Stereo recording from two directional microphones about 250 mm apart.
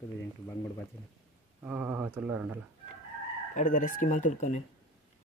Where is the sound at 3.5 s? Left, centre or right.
Left.